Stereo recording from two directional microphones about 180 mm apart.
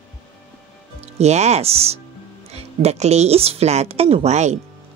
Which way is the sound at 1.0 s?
35° right (ahead or behind).